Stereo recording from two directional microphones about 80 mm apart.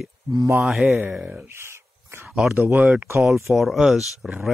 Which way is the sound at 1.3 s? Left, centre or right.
Right.